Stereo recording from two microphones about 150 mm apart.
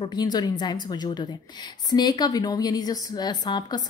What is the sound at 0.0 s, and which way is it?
A woman's voice, 25° left (ahead or behind).